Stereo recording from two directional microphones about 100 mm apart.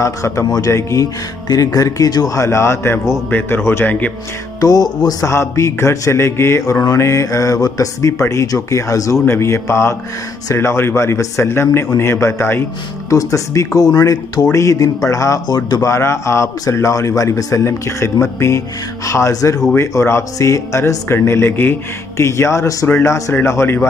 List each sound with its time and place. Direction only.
0.0 s speech: 30° left (ahead or behind)
1.5 s mantra: 35° left (ahead or behind)
4.6 s speech: 40° left (ahead or behind)
5.2 s mantra: 30° left (ahead or behind)
13.1 s speech: 35° left (ahead or behind)
18.2 s mantra: 25° left (ahead or behind)
19.0 s speech: 30° left (ahead or behind)
19.7 s mantra: 25° left (ahead or behind)